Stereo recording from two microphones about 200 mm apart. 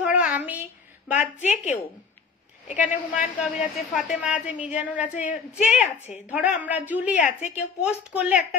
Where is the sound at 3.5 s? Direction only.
40° left (ahead or behind).